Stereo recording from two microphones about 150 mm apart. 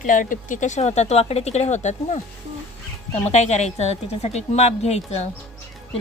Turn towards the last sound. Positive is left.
turn(degrees=45)  # may be behind; listen again after turning